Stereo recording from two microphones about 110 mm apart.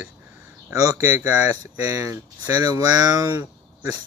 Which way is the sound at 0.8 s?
35° right (ahead or behind).